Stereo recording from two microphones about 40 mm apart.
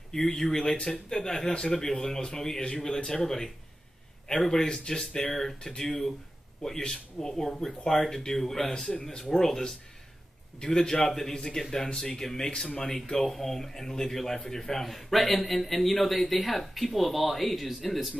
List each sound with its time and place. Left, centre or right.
0.1 s a man's voice: centre
4.5 s a man's voice: centre
5.3 s a man's voice: centre